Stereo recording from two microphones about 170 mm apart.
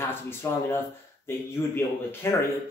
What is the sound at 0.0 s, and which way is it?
Speech, 15° left (ahead or behind).